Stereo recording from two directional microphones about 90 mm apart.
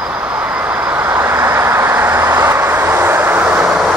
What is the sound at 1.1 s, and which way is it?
Vehicle, 25° right (ahead or behind).